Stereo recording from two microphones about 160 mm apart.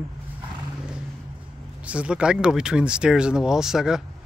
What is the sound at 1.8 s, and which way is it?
Speech, 5° right (ahead or behind).